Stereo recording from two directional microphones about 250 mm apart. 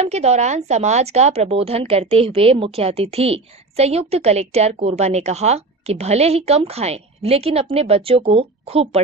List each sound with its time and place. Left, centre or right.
0.0 s a woman's voice: right